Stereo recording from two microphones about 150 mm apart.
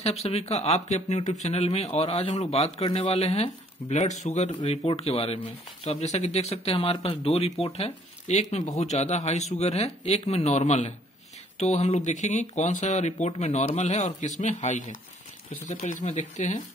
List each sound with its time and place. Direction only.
0.0 s speech: 45° left (ahead or behind)